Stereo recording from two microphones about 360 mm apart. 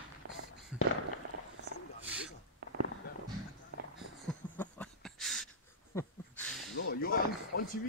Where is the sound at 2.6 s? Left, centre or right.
Right.